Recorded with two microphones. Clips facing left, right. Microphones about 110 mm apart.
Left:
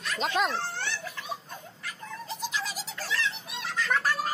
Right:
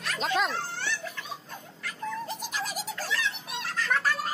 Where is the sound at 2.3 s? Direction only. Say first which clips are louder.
Even; 50° right (ahead or behind).